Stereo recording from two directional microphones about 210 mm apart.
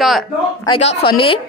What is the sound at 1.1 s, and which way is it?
Speech, 25° left (ahead or behind).